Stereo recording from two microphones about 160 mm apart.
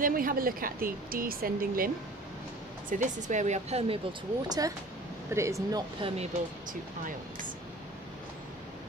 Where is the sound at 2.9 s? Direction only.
50° right (ahead or behind).